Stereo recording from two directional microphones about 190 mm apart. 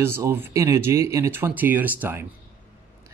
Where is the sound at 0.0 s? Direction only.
15° right (ahead or behind).